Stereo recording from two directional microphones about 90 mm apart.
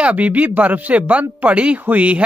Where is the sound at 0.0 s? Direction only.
15° right (ahead or behind).